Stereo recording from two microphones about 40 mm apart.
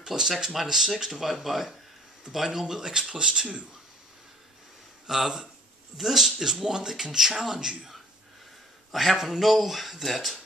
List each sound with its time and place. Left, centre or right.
0.0 s speech: centre
5.0 s speech: centre
8.9 s speech: centre